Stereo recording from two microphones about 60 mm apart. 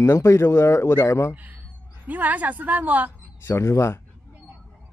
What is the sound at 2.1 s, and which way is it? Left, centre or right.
A woman's voice, right.